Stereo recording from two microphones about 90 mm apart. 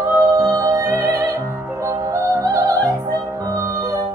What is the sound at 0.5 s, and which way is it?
Music, 35° right (ahead or behind).